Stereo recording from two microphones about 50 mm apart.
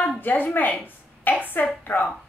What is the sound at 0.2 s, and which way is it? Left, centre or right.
A woman's voice, left.